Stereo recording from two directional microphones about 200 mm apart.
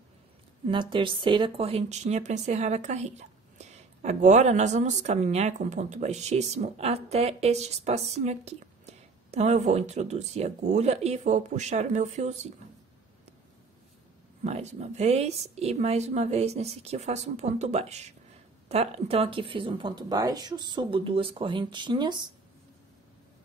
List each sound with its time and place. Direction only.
0.7 s speech: 25° right (ahead or behind)
14.4 s speech: 35° right (ahead or behind)